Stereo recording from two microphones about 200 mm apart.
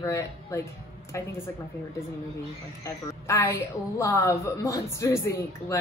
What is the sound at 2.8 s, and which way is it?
A woman's voice, 15° left (ahead or behind).